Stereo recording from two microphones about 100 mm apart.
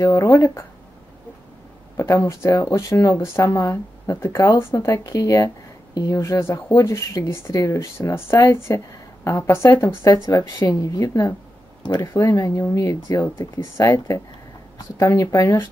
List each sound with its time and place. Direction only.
0.0 s speech: 30° left (ahead or behind)
2.0 s speech: 30° left (ahead or behind)